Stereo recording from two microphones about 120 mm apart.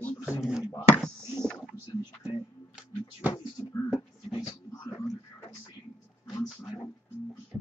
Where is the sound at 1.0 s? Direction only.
5° left (ahead or behind).